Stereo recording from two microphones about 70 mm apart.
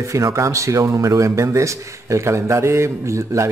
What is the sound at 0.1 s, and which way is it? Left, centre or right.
A man's voice, right.